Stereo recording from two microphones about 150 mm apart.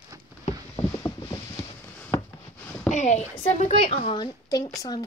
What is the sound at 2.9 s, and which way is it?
A woman's voice, 50° left (ahead or behind).